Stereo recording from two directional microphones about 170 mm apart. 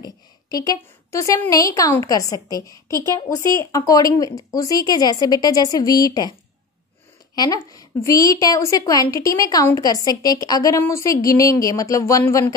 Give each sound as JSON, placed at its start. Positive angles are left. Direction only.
{"t": 0.0, "sound": "a woman's voice", "side_deg": 20}
{"t": 7.3, "sound": "a woman's voice", "side_deg": 20}